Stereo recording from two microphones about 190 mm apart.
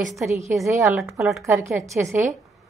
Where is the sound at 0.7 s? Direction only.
15° right (ahead or behind).